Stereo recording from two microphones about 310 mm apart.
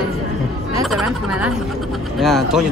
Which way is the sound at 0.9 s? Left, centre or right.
Centre.